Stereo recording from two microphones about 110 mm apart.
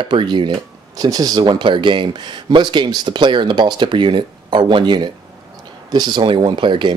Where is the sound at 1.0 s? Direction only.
35° right (ahead or behind).